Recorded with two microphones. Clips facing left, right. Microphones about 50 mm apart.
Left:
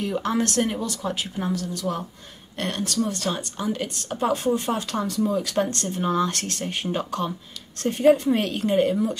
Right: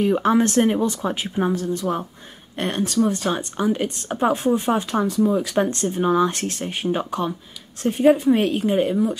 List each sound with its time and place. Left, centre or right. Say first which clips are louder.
0.0 s a woman's voice: right 7 dB; right